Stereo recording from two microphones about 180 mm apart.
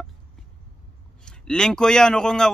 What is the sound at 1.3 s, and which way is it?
Speech, 5° left (ahead or behind).